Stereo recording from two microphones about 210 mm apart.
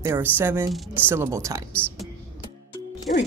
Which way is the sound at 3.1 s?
40° left (ahead or behind).